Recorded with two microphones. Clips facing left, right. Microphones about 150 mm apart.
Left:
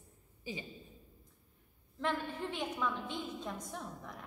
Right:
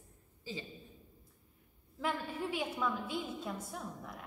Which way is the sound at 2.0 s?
5° right (ahead or behind).